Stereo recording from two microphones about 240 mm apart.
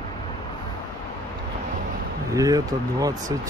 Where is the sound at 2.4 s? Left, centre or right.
Centre.